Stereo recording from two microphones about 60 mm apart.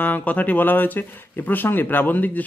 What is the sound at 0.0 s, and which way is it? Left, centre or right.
Speech, left.